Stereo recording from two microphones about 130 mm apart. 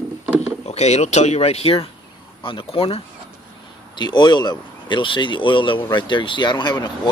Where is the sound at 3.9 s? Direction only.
35° left (ahead or behind).